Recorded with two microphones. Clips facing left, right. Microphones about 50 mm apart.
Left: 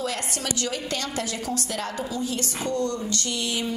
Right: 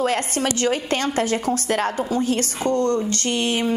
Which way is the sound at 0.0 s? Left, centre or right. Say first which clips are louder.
Right 8 dB; right.